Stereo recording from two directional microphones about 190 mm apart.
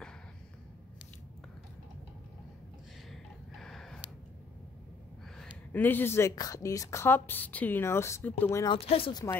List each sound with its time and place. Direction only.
3.1 s gasp: centre (ahead or behind)
5.7 s speech: 10° left (ahead or behind)
8.6 s speech: 30° left (ahead or behind)